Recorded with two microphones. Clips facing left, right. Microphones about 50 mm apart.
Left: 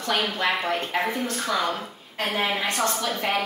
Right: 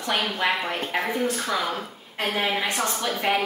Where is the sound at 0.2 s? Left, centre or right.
Centre.